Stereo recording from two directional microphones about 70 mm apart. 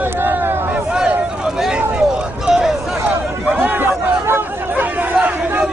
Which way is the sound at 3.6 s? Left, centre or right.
Right.